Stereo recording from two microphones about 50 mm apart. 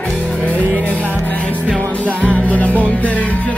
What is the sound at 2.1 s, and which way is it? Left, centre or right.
Music, left.